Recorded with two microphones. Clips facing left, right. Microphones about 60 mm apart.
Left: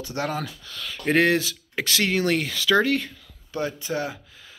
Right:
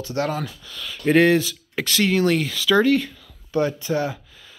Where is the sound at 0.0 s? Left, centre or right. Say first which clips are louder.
Right 4 dB; left.